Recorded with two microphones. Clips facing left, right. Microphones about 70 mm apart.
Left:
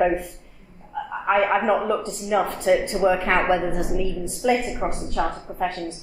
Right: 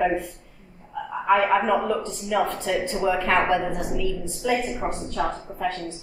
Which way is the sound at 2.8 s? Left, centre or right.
Left.